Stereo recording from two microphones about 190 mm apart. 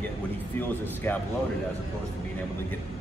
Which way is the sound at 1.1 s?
10° left (ahead or behind).